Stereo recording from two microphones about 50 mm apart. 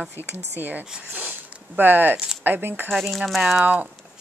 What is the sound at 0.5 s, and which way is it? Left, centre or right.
A woman's voice, right.